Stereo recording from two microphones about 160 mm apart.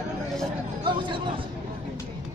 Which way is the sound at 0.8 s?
30° right (ahead or behind).